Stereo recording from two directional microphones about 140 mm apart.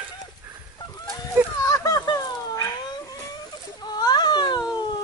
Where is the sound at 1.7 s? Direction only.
25° left (ahead or behind).